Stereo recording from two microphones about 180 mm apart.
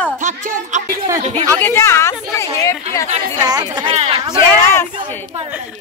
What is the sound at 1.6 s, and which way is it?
A woman's voice, 15° left (ahead or behind).